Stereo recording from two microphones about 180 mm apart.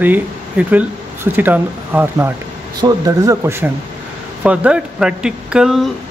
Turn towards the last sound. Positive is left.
turn(degrees=0)  # may be behind; listen again after turning